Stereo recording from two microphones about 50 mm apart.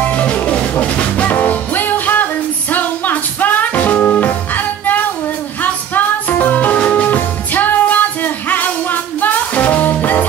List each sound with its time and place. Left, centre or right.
0.0 s music: left